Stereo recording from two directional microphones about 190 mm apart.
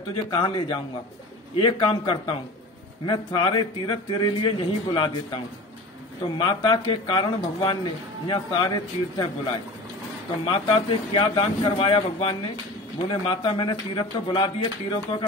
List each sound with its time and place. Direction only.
0.1 s speech: 25° left (ahead or behind)